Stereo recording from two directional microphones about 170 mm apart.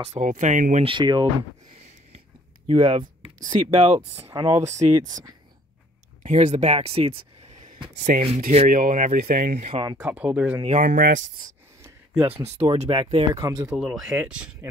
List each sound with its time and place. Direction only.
0.0 s speech: 45° right (ahead or behind)
0.8 s speech: 25° right (ahead or behind)
2.7 s speech: 30° right (ahead or behind)
4.3 s speech: 15° right (ahead or behind)
4.6 s speech: 40° right (ahead or behind)
6.2 s speech: 45° right (ahead or behind)
8.1 s speech: 60° right (ahead or behind)
9.8 s speech: 20° right (ahead or behind)
10.0 s speech: 10° right (ahead or behind)
10.8 s speech: 50° right (ahead or behind)
12.4 s speech: 40° right (ahead or behind)
12.9 s speech: 30° right (ahead or behind)
13.7 s speech: 5° right (ahead or behind)